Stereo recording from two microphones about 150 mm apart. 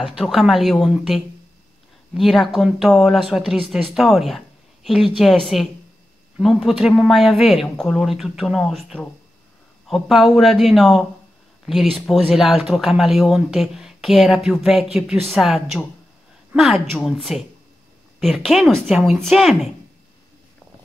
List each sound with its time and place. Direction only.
0.0 s speech: centre (ahead or behind)